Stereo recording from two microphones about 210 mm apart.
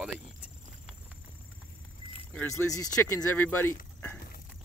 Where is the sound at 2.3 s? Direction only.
10° left (ahead or behind).